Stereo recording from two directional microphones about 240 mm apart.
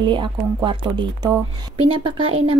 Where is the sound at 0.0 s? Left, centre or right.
Centre.